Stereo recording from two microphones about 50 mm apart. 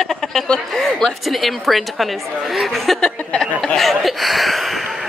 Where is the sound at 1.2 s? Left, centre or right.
Centre.